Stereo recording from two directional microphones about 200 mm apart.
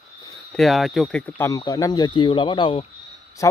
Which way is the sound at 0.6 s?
Centre (ahead or behind).